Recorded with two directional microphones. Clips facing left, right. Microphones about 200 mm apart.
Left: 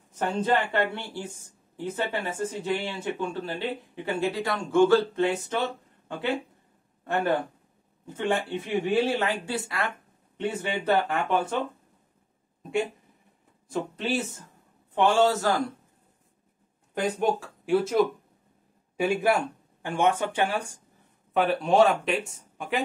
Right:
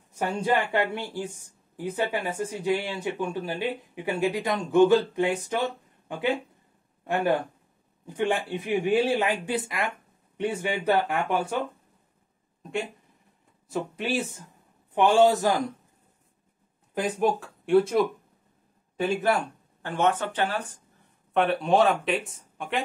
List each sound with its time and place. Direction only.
0.1 s speech: 10° right (ahead or behind)
8.1 s speech: 15° right (ahead or behind)
13.7 s speech: 10° right (ahead or behind)
16.9 s speech: centre (ahead or behind)